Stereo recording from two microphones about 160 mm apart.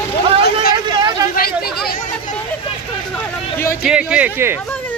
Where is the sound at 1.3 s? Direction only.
70° left (ahead or behind).